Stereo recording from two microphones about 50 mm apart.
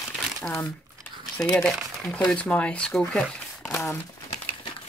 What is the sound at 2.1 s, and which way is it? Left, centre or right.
Speech, left.